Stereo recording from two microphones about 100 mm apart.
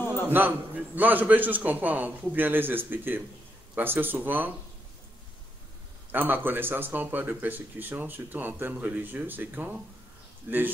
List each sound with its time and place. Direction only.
0.3 s a man's voice: 20° right (ahead or behind)
6.1 s speech: 20° right (ahead or behind)